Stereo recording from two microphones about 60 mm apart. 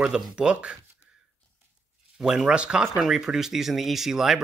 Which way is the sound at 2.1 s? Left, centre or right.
Centre.